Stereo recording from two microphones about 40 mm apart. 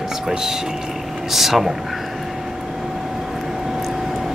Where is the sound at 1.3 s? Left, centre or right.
Centre.